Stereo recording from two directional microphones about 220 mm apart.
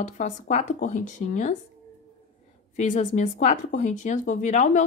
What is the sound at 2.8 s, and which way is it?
A woman's voice, 35° left (ahead or behind).